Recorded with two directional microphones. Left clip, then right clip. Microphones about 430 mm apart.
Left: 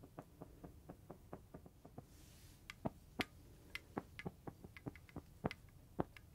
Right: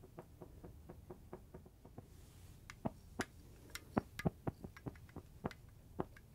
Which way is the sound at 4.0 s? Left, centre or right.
Right.